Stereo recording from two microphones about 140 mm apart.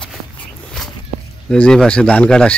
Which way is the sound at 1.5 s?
5° left (ahead or behind).